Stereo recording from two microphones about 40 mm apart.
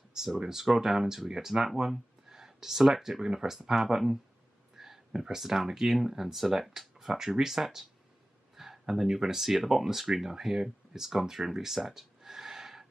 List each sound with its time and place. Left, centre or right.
0.4 s speech: centre
4.7 s a sound: centre
5.4 s speech: centre